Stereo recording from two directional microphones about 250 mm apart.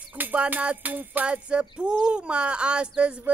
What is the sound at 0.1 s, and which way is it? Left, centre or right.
Music, centre.